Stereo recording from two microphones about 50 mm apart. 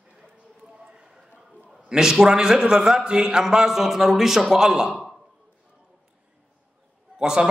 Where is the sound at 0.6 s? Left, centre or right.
Centre.